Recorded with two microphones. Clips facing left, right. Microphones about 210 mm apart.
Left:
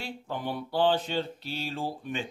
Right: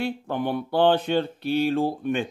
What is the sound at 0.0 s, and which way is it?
Speech, 60° right (ahead or behind).